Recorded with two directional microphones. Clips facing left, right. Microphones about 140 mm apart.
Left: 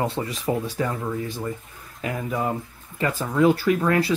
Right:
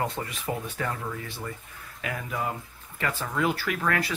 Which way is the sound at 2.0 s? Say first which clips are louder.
Left 6 dB; 30° left (ahead or behind).